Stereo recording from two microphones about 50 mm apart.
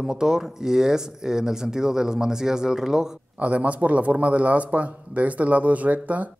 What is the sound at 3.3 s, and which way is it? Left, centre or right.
Speech, right.